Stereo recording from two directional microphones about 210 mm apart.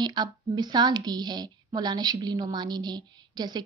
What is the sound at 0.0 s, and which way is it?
A woman's voice, 20° right (ahead or behind).